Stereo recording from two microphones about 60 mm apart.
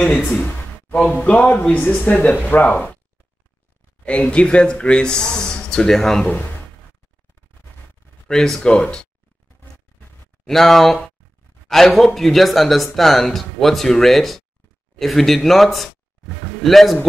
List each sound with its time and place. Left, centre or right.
0.0 s speech: centre
0.9 s speech: centre
1.6 s speech: left
4.0 s speech: centre
6.2 s speech: left
8.3 s speech: centre
10.5 s speech: centre